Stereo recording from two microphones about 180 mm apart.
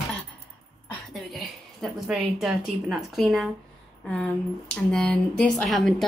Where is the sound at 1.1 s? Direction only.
Centre (ahead or behind).